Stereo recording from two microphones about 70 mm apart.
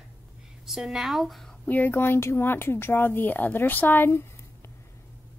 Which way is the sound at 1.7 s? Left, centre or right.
Left.